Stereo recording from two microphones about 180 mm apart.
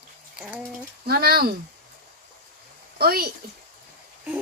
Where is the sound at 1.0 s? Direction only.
55° right (ahead or behind).